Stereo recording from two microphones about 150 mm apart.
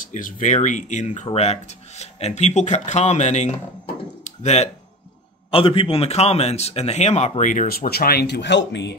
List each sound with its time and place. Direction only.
0.0 s speech: 60° left (ahead or behind)
5.5 s a man's voice: 35° left (ahead or behind); by 8.4 s 90° left